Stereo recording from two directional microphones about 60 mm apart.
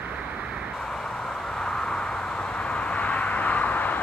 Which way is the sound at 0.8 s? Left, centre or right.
Centre.